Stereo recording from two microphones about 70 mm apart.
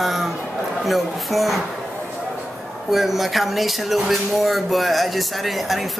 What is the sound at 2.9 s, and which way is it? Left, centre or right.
Speech, centre.